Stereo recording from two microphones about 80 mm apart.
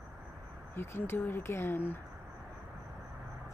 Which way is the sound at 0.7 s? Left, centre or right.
Left.